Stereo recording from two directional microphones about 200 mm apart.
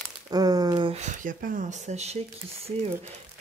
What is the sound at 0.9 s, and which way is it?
Speech, 40° right (ahead or behind).